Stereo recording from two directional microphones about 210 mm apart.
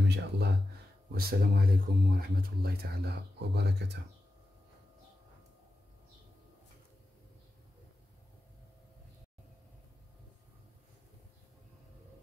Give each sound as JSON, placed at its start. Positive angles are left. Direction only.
{"t": 0.0, "sound": "speech", "side_deg": -55}